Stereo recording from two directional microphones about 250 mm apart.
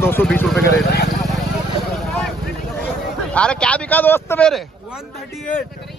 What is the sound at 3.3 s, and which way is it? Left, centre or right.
Speech, centre.